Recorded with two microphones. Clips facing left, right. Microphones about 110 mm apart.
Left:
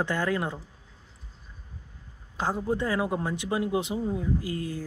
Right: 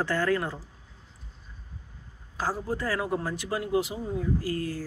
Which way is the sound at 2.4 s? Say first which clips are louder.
Left 2 dB; 20° left (ahead or behind).